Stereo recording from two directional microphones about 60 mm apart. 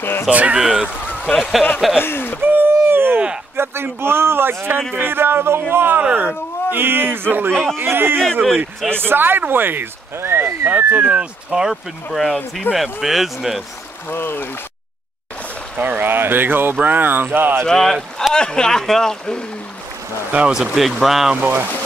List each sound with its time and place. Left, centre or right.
0.3 s speech: right
0.6 s speech: centre
2.0 s speech: left
2.4 s a sound: right
3.5 s speech: right
11.1 s speech: centre
11.7 s speech: centre
14.0 s speech: left
15.8 s speech: right
17.6 s speech: centre
20.2 s speech: right
20.7 s speech: centre